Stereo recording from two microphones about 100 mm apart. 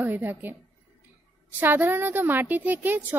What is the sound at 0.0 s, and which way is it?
Speech, 20° right (ahead or behind).